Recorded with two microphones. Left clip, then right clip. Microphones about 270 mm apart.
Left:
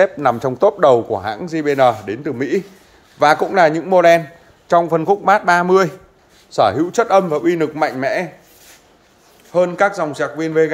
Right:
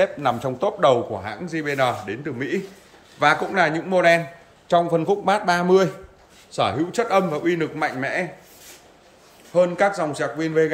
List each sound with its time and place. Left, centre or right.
0.0 s a man's voice: left
9.5 s a man's voice: centre